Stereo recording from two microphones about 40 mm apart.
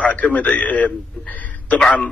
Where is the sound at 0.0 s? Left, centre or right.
Left.